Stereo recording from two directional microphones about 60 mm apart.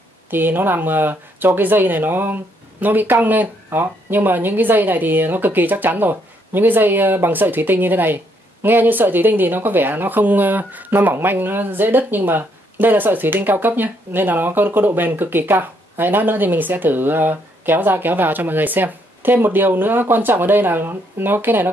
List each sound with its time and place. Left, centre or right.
0.3 s speech: right